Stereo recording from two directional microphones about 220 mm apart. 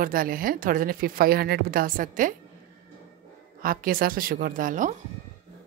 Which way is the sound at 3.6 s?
40° right (ahead or behind).